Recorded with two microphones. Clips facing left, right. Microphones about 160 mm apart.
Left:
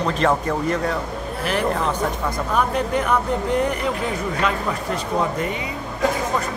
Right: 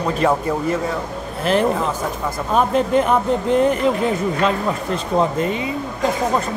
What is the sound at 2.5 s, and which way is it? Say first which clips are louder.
Speech: right 5 dB; 25° right (ahead or behind).